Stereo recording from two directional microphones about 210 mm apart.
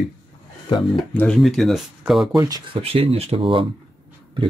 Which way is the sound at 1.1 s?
5° left (ahead or behind).